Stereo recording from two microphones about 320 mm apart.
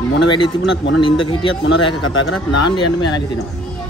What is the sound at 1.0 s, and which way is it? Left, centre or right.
Speech, centre.